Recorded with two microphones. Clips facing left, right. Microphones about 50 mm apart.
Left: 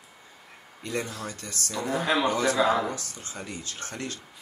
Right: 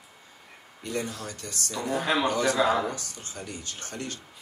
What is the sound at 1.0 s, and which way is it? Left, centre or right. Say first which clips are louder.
Speech: even; centre.